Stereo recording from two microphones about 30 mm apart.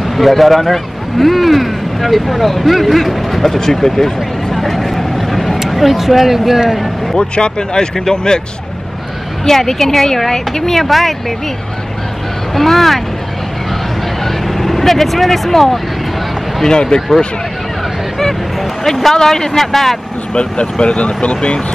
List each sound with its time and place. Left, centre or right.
0.0 s speech: centre
3.5 s speech: centre
4.6 s vehicle: centre
5.7 s speech: centre
6.7 s a sound: centre
7.2 s speech: left
9.4 s speech: centre
12.5 s speech: centre
14.2 s vehicle: centre
16.6 s speech: left
18.2 s speech: centre
20.8 s speech: left